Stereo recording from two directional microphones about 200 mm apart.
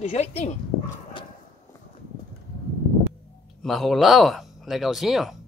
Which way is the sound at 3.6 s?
Centre (ahead or behind).